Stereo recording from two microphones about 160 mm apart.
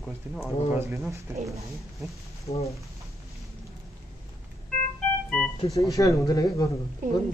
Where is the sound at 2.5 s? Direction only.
40° left (ahead or behind).